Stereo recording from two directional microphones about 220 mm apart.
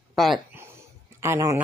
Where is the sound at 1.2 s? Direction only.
10° right (ahead or behind).